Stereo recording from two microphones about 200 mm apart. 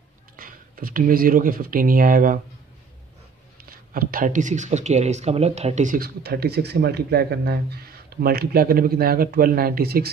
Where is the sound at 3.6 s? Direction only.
45° right (ahead or behind).